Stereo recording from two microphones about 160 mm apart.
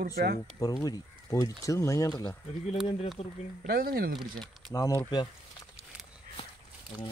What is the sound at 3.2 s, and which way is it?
Speech, 40° left (ahead or behind).